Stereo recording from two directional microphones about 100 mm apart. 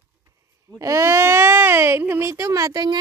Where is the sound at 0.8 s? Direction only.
30° right (ahead or behind).